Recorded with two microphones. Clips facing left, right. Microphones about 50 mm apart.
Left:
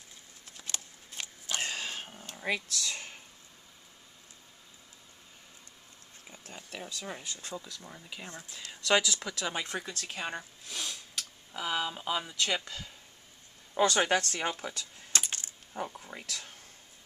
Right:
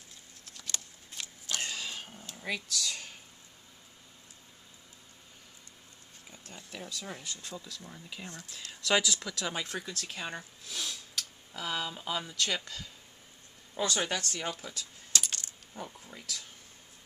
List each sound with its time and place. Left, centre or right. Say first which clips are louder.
0.5 s a sound: even; left
2.3 s speech: left 3 dB; left
6.9 s speech: even; centre
8.8 s speech: left 1 dB; centre
13.7 s speech: left 6 dB; left
15.2 s coin: even; left
15.8 s speech: left 5 dB; left
16.3 s speech: right 2 dB; left